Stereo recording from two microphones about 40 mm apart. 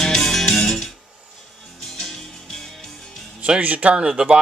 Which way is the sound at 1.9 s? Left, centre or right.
Centre.